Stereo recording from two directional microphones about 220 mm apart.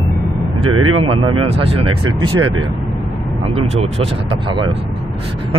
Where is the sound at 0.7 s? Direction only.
80° right.